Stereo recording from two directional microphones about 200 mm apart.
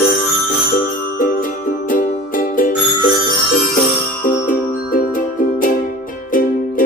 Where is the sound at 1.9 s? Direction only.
45° left (ahead or behind).